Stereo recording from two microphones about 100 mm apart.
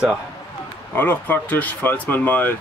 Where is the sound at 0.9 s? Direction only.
20° left (ahead or behind).